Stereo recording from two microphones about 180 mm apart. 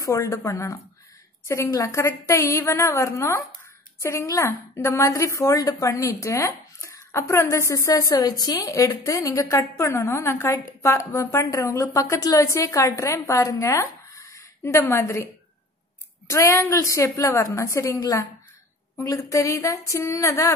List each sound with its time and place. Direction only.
0.0 s a woman's voice: 15° left (ahead or behind)
16.3 s a woman's voice: 15° left (ahead or behind)